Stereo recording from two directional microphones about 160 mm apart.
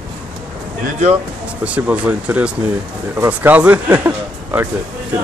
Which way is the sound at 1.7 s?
10° right (ahead or behind).